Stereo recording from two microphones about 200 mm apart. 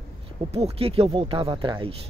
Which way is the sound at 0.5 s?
30° right (ahead or behind).